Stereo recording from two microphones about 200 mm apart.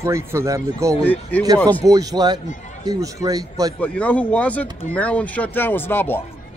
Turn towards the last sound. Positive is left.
turn(degrees=10)  # may be behind; listen again after turning